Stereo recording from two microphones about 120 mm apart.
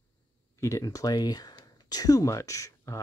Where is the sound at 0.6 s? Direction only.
25° left (ahead or behind).